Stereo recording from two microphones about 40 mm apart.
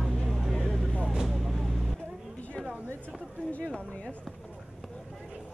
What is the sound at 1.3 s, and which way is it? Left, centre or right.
Vehicle, centre.